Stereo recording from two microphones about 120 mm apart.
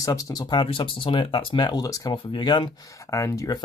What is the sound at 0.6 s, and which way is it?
Speech, 45° left (ahead or behind).